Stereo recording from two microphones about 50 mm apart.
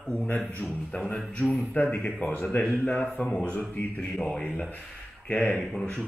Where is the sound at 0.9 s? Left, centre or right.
Left.